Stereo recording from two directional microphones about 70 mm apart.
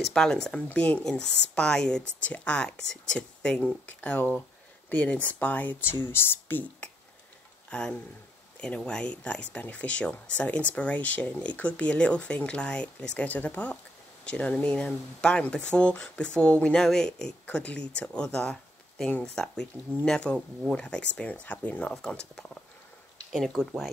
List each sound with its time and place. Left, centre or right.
0.0 s speech: centre
0.7 s speech: left
1.0 s speech: centre; by 6.6 s left
7.7 s speech: centre
21.9 s speech: centre
23.3 s speech: centre